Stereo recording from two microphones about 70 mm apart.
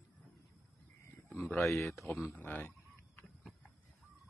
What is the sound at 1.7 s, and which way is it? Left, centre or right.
Speech, left.